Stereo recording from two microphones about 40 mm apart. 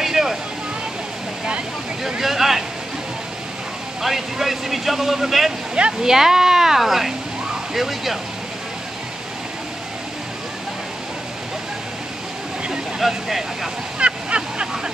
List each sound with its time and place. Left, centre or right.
0.0 s vehicle: centre
2.0 s speech: centre
4.0 s speech: centre
13.0 s speech: centre
13.9 s a sound: right